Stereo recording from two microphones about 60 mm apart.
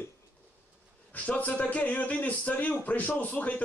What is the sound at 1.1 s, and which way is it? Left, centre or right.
Speech, left.